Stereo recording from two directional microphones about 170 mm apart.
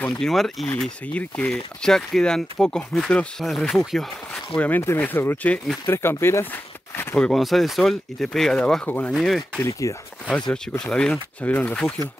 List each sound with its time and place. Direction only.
0.0 s speech: 5° left (ahead or behind)
4.6 s speech: 10° left (ahead or behind)
9.6 s speech: 20° left (ahead or behind)
10.5 s speech: 5° left (ahead or behind)